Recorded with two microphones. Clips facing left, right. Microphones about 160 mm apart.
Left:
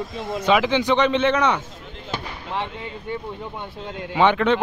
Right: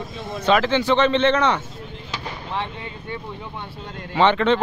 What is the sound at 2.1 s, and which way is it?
Fireworks, 55° left (ahead or behind).